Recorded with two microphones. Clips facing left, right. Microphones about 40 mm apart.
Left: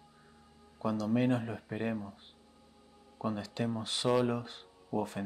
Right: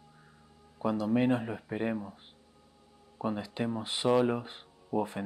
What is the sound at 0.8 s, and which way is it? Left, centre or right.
Speech, centre.